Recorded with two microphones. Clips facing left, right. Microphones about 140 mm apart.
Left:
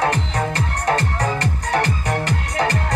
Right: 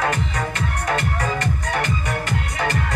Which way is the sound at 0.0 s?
35° left (ahead or behind).